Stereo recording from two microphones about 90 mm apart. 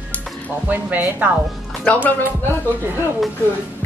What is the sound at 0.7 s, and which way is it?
Speech, 20° right (ahead or behind).